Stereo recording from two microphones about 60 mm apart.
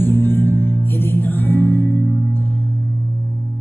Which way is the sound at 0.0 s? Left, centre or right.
Left.